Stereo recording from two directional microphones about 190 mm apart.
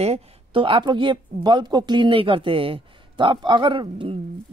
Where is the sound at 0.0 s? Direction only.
30° right (ahead or behind).